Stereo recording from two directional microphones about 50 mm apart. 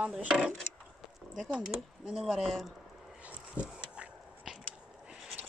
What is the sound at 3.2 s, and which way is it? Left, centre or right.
Dog, right.